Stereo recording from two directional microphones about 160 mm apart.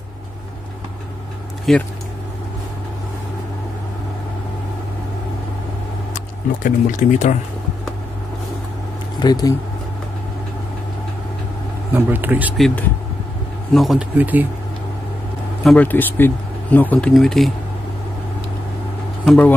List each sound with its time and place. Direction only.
1.7 s speech: centre (ahead or behind)
6.1 s speech: 50° left (ahead or behind)
9.2 s speech: 25° left (ahead or behind)
11.9 s speech: 10° right (ahead or behind)
12.5 s speech: 5° left (ahead or behind); by 14.5 s 10° right (ahead or behind)
15.6 s speech: 10° left (ahead or behind)